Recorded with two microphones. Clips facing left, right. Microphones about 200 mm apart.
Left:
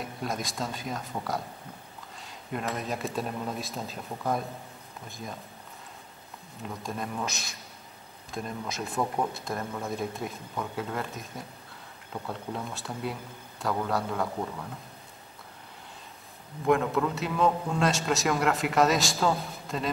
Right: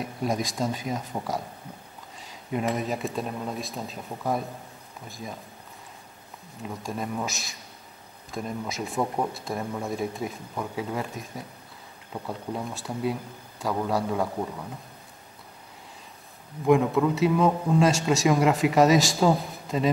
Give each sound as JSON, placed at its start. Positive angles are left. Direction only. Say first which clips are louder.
{"t": 0.0, "sound": "speech", "louder": "right 5 dB", "side_deg": 0}
{"t": 1.1, "sound": "speech", "louder": "right 3 dB", "side_deg": -20}
{"t": 2.1, "sound": "a man's voice", "louder": "right 5 dB", "side_deg": 0}
{"t": 6.6, "sound": "a man's voice", "louder": "right 3 dB", "side_deg": 0}
{"t": 14.1, "sound": "speech", "louder": "right 3 dB", "side_deg": -15}
{"t": 16.6, "sound": "a man's voice", "louder": "right 4 dB", "side_deg": 0}